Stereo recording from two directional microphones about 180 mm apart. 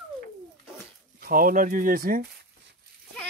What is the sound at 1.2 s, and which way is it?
Speech, 50° right (ahead or behind).